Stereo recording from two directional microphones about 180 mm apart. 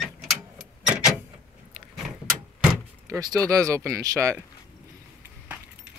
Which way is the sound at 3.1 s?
20° right (ahead or behind).